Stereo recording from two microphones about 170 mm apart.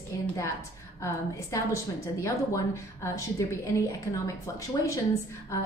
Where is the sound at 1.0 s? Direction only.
15° left (ahead or behind).